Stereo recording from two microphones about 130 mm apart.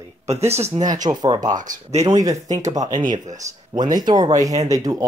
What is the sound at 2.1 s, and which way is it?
Speech, 30° right (ahead or behind).